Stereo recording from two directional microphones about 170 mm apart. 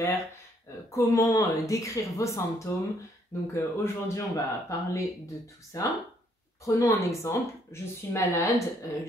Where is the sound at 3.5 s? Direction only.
15° left (ahead or behind).